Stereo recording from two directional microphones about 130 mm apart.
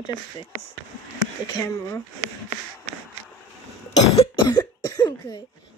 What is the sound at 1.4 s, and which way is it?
Speech, 25° left (ahead or behind).